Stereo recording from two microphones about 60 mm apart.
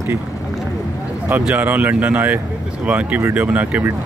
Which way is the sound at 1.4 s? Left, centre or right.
Right.